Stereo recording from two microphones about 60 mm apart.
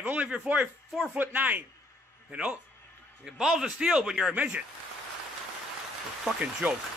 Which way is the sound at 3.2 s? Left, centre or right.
Centre.